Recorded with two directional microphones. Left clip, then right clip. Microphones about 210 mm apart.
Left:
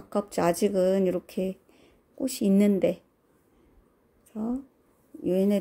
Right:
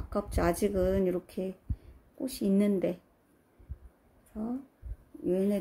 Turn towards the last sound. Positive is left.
turn(degrees=35)  # may be behind; listen again after turning